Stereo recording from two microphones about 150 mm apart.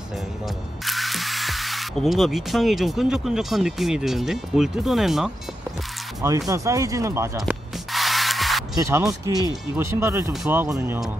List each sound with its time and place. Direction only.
0.8 s speech: centre (ahead or behind)
6.5 s speech: 20° right (ahead or behind)
7.9 s rub: centre (ahead or behind)
8.7 s speech: 20° right (ahead or behind)